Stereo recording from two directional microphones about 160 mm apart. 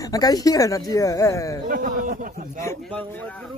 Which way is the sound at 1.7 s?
60° right (ahead or behind).